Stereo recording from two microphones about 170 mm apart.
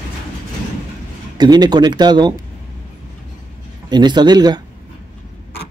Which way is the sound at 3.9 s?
25° right (ahead or behind).